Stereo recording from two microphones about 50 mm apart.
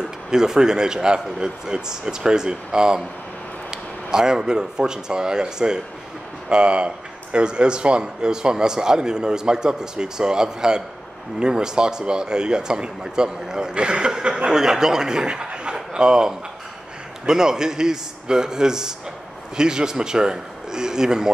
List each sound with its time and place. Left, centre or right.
0.3 s a man's voice: centre